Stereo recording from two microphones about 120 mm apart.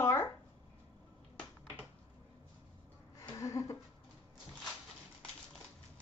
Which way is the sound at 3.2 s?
25° left (ahead or behind).